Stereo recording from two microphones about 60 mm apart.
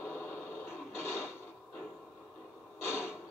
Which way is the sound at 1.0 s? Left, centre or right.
Left.